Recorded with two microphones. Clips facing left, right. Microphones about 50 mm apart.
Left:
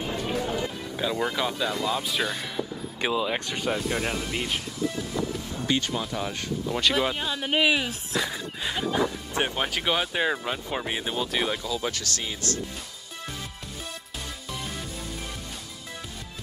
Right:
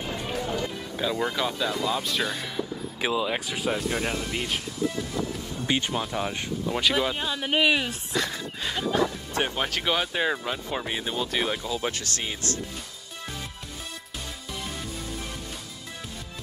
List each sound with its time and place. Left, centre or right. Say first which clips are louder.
0.3 s run: left 1 dB; centre
0.6 s speech: even; centre
5.7 s speech: even; centre
7.0 s speech: even; centre
11.6 s speech: even; right